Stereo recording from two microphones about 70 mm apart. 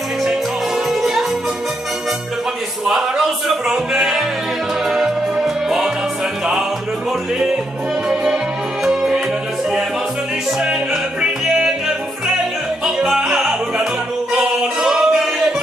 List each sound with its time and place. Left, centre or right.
0.8 s music: centre
2.9 s music: centre
7.1 s music: centre
10.6 s music: centre
12.8 s music: centre